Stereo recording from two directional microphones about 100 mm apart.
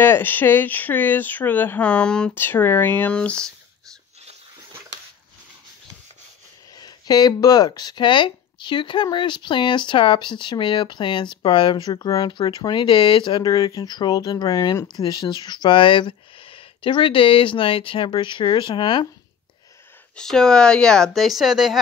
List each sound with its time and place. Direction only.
0.0 s speech: 20° left (ahead or behind)
2.3 s speech: 20° left (ahead or behind)
6.7 s speech: 40° left (ahead or behind)
20.2 s speech: 5° left (ahead or behind)